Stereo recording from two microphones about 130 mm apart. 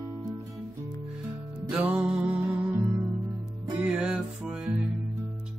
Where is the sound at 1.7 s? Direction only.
10° right (ahead or behind).